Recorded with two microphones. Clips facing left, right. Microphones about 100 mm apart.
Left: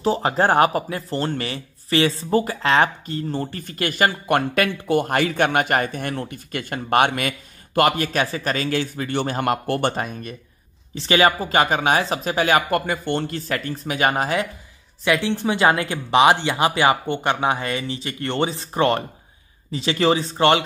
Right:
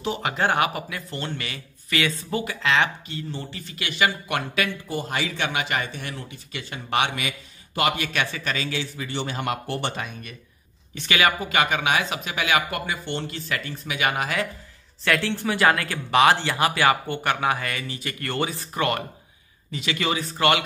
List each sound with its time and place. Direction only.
0.0 s speech: 35° left (ahead or behind)
4.8 s speech: 60° left (ahead or behind); by 14.3 s 35° left (ahead or behind)
15.0 s speech: 15° left (ahead or behind)